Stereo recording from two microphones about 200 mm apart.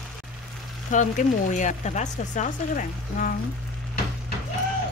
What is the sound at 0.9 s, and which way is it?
Speech, 40° left (ahead or behind).